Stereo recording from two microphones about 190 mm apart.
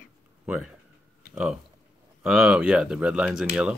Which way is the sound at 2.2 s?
5° right (ahead or behind).